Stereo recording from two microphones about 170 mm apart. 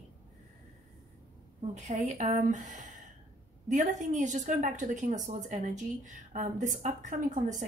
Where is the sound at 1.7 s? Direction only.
45° right (ahead or behind).